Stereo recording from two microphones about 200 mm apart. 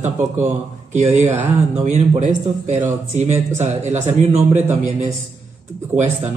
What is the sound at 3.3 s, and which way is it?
Speech, 10° right (ahead or behind).